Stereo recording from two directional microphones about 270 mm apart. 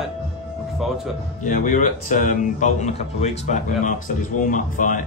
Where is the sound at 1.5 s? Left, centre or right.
Left.